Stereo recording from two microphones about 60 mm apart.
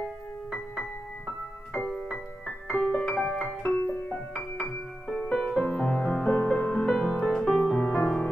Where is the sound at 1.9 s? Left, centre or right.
Centre.